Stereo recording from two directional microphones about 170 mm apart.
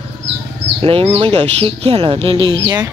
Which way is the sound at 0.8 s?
35° right (ahead or behind).